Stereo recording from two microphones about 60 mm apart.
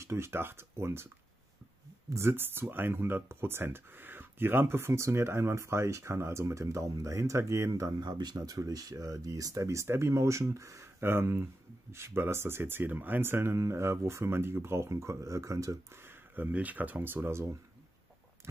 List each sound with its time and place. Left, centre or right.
0.0 s speech: right
2.0 s speech: right
9.8 s speech: right
11.0 s speech: right
15.9 s a sound: right
16.5 s speech: right